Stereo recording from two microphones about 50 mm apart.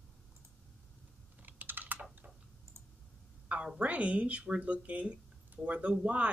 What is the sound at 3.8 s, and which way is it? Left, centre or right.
Speech, right.